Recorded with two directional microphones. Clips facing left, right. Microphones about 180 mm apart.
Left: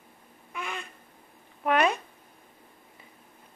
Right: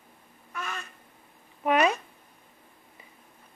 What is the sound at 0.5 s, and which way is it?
Crow, 15° left (ahead or behind).